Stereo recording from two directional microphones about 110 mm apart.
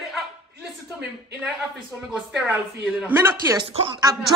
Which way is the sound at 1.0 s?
10° right (ahead or behind).